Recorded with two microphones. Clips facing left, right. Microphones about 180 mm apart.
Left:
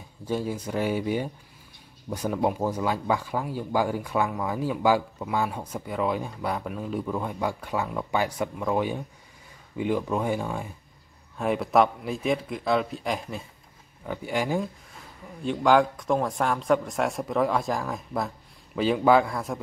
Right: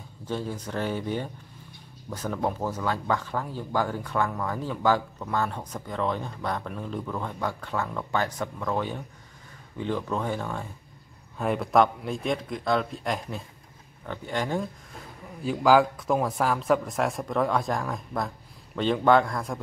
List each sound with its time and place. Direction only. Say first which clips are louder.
0.2 s speech: left 3 dB; 10° left (ahead or behind)
11.3 s speech: even; centre (ahead or behind)
15.4 s speech: even; 5° right (ahead or behind)